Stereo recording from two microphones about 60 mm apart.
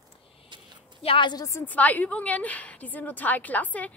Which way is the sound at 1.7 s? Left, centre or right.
Left.